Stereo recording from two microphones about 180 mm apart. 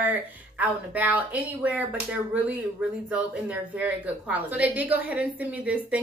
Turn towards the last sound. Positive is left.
turn(degrees=-10)  # may be behind; listen again after turning